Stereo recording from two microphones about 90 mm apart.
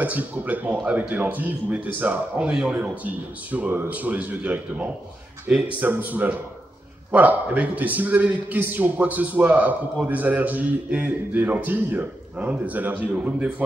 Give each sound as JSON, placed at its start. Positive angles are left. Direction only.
{"t": 0.0, "sound": "a man's voice", "side_deg": -15}